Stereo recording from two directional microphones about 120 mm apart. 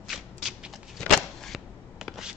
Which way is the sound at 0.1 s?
5° right (ahead or behind).